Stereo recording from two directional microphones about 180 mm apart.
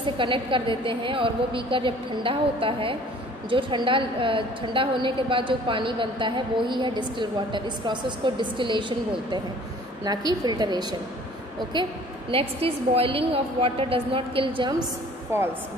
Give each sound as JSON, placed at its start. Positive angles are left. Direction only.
{"t": 0.0, "sound": "a woman's voice", "side_deg": -30}
{"t": 12.3, "sound": "a woman's voice", "side_deg": -30}